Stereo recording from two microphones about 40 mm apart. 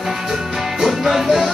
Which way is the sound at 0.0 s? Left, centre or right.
Centre.